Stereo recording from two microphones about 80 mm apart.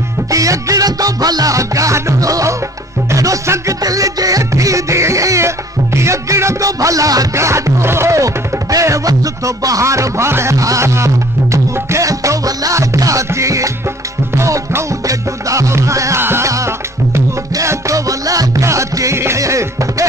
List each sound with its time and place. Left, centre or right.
0.3 s music: right
16.2 s music: right